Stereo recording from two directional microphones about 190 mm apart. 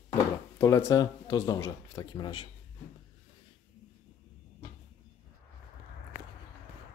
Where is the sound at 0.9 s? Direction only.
20° left (ahead or behind).